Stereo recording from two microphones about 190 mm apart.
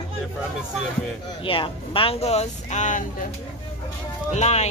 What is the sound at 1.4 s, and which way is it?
Speech, 25° left (ahead or behind).